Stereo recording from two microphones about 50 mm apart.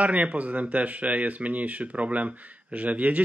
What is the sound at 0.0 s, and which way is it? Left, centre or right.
Speech, right.